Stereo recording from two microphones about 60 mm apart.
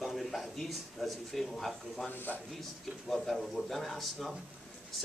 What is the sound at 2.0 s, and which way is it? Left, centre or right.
Speech, left.